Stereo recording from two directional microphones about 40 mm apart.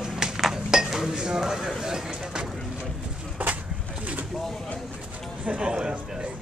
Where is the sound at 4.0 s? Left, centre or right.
Right.